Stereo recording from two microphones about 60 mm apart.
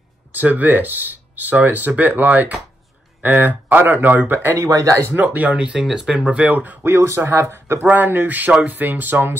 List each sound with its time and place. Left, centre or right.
0.3 s speech: right
4.6 s speech: right
5.1 s speech: right; by 6.3 s centre
6.3 s speech: right
7.4 s speech: right
7.8 s speech: right